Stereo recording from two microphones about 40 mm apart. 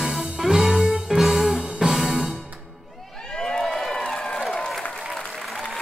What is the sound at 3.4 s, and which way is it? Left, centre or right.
Crowd, centre.